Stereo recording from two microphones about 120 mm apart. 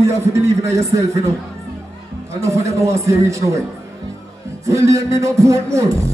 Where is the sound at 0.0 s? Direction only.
25° right (ahead or behind).